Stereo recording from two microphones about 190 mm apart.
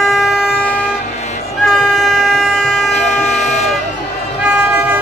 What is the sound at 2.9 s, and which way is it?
Vehicle, 40° left (ahead or behind).